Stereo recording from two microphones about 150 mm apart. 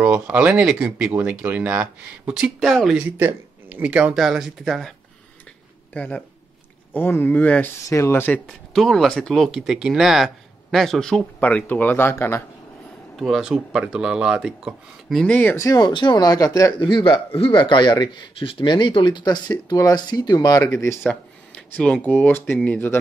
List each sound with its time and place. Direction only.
0.0 s speech: 10° right (ahead or behind)
3.2 s speech: 10° right (ahead or behind)
5.9 s speech: 10° left (ahead or behind)
8.7 s speech: centre (ahead or behind)
13.1 s speech: centre (ahead or behind)
15.5 s a man's voice: 20° left (ahead or behind)
21.1 s speech: 5° left (ahead or behind)